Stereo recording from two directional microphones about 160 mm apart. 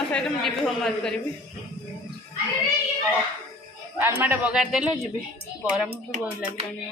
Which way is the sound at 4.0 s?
10° right (ahead or behind).